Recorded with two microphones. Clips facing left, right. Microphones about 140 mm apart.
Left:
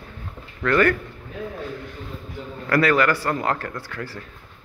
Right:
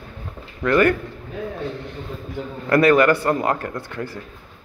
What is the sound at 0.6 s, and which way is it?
Speech, 15° right (ahead or behind).